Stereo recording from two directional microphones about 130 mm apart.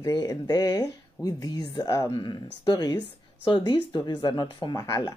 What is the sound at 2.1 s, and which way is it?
A woman's voice, 35° left (ahead or behind).